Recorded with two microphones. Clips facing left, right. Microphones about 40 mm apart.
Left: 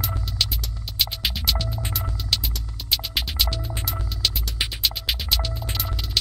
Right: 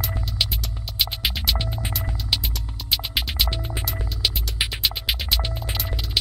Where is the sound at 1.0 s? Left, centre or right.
Centre.